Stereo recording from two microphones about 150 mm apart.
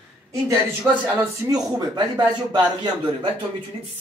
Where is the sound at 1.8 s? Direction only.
30° right (ahead or behind).